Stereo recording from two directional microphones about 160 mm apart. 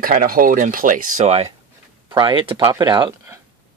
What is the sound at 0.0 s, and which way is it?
Speech, 65° right (ahead or behind).